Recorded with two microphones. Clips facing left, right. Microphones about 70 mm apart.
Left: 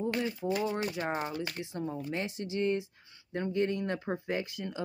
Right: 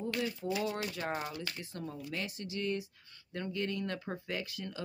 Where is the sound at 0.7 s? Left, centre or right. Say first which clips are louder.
Left 4 dB; left.